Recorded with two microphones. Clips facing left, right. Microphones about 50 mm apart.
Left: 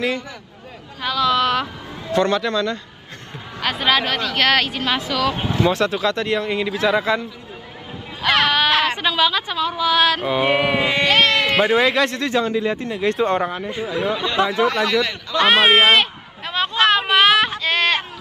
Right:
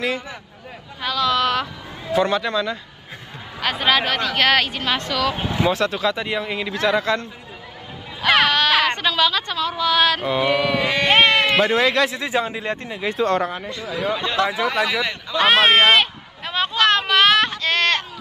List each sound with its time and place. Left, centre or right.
1.0 s a woman's voice: centre
10.5 s a sound: left
11.1 s sheep: right
11.5 s speech: centre
12.2 s a man's voice: centre
12.8 s speech: centre
13.2 s speech: centre
13.7 s a sound: centre
14.7 s a man's voice: centre
15.4 s a sound: centre